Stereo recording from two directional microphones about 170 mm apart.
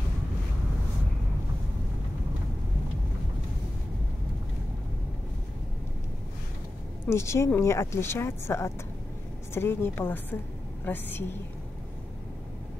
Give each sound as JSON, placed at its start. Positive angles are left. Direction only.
{"t": 7.1, "sound": "a woman's voice", "side_deg": 15}